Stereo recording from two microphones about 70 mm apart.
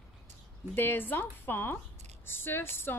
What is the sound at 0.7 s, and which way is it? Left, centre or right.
Speech, left.